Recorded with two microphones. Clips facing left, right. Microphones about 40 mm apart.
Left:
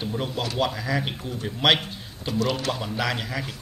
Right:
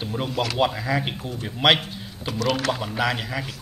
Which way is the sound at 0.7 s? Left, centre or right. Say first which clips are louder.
Right 2 dB; centre.